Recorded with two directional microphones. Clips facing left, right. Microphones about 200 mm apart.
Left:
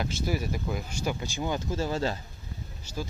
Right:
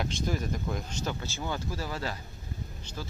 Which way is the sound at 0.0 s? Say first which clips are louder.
Left 1 dB; 5° left (ahead or behind).